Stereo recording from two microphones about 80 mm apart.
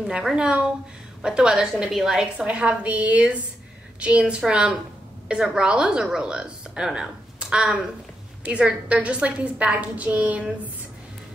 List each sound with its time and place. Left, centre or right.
0.0 s a woman's voice: centre